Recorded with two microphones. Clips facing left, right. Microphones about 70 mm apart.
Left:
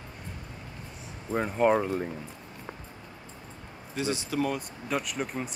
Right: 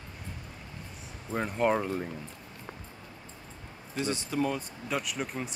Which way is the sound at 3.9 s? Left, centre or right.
Centre.